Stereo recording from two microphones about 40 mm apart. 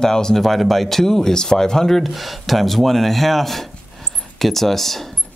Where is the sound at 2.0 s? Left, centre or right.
Centre.